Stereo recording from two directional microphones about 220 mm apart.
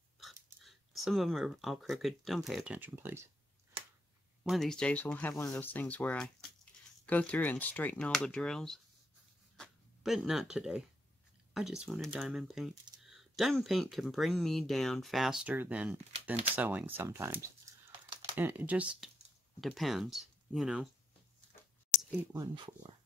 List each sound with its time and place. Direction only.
0.2 s speech: centre (ahead or behind)
4.4 s speech: centre (ahead or behind)
17.9 s typing: 20° right (ahead or behind)
18.3 s speech: 10° right (ahead or behind)
22.1 s speech: 10° right (ahead or behind)